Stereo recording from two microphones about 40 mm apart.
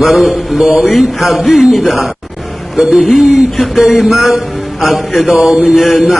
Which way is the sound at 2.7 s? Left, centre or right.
Centre.